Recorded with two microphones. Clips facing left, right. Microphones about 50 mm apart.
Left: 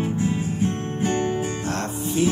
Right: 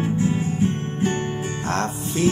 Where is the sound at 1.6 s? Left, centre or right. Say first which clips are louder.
Right 2 dB; right.